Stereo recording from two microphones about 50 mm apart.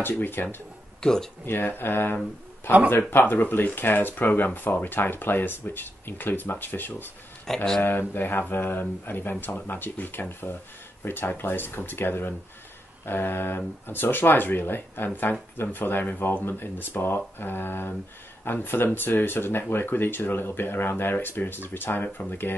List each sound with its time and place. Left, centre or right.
0.2 s speech: left
1.0 s speech: centre
1.4 s speech: left
7.5 s speech: centre
7.8 s speech: left